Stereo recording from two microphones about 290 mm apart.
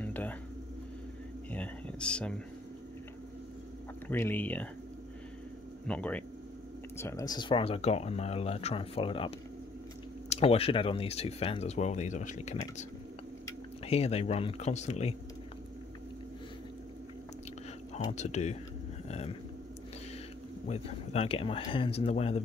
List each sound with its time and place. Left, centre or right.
0.0 s a sound: centre
1.5 s speech: centre
4.1 s speech: centre
5.9 s speech: centre
10.3 s speech: centre
17.9 s speech: left
20.6 s speech: left